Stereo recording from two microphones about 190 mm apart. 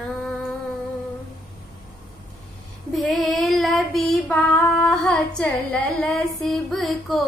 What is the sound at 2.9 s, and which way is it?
Child singing, centre (ahead or behind).